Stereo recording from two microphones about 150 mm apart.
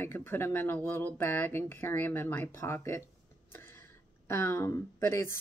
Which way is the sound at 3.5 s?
15° left (ahead or behind).